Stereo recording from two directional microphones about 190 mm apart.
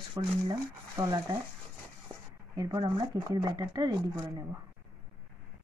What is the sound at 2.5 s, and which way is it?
Speech, 20° right (ahead or behind).